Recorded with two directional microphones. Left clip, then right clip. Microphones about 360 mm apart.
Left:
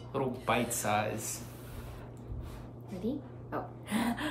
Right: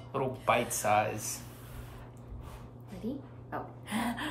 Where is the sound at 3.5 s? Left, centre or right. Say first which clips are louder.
Left 1 dB; centre.